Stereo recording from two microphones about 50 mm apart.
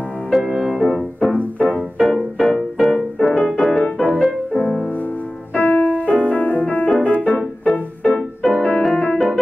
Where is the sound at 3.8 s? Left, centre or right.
Left.